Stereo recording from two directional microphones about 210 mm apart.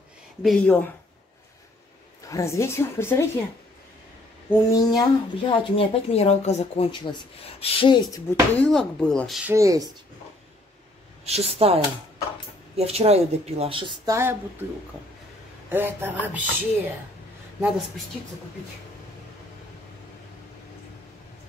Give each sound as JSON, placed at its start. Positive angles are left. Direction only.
{"t": 0.4, "sound": "speech", "side_deg": 5}
{"t": 2.2, "sound": "speech", "side_deg": 15}
{"t": 4.5, "sound": "speech", "side_deg": 20}
{"t": 8.5, "sound": "speech", "side_deg": 5}
{"t": 9.5, "sound": "speech", "side_deg": -15}
{"t": 11.2, "sound": "a woman's voice", "side_deg": -30}
{"t": 15.7, "sound": "speech", "side_deg": -10}